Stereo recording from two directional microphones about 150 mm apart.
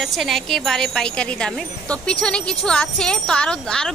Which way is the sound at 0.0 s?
Centre (ahead or behind).